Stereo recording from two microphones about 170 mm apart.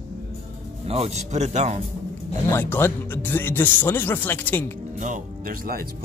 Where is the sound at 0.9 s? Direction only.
40° right (ahead or behind).